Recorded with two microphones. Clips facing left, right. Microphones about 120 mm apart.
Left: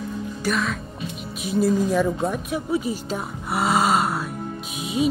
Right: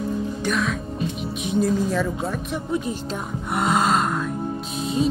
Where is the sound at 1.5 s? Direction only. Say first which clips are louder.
Left 2 dB; 10° left (ahead or behind).